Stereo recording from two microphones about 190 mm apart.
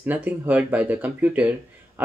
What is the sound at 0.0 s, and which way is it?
Speech, 10° right (ahead or behind).